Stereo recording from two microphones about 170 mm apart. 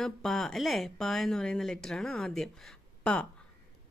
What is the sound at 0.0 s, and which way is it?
Speech, centre (ahead or behind).